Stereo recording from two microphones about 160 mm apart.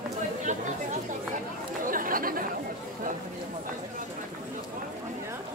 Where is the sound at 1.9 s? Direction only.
60° right (ahead or behind).